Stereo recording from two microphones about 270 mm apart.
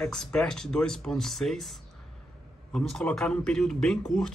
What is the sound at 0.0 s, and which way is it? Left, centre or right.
Speech, centre.